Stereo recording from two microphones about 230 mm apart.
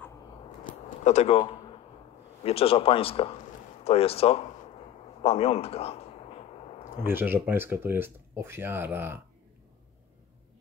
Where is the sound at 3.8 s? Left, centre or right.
Left.